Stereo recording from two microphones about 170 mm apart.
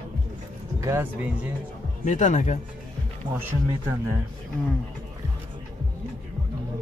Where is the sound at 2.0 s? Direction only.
45° left (ahead or behind).